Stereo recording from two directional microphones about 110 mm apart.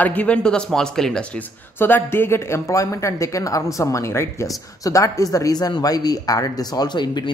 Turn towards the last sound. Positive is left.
turn(degrees=40)  # may be behind; listen again after turning